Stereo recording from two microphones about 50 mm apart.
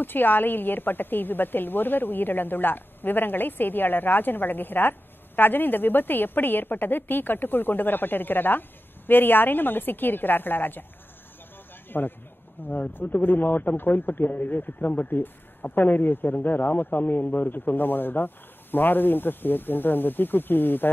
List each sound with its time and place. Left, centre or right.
0.0 s a woman's voice: left
11.9 s a man's voice: left